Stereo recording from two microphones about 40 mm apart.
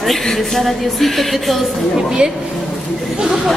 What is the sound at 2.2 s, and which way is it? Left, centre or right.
Speech, right.